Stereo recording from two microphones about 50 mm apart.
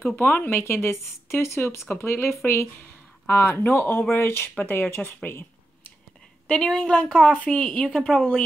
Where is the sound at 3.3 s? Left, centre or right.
Left.